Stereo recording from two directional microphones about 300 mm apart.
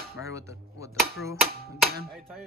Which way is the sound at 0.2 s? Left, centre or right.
Centre.